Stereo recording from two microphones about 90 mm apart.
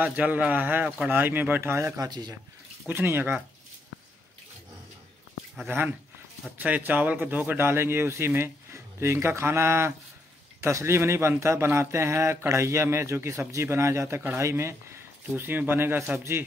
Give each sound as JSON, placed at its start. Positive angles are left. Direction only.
{"t": 0.0, "sound": "a man's voice", "side_deg": -15}
{"t": 2.0, "sound": "speech", "side_deg": -50}
{"t": 2.9, "sound": "a man's voice", "side_deg": -25}
{"t": 5.7, "sound": "a man's voice", "side_deg": -20}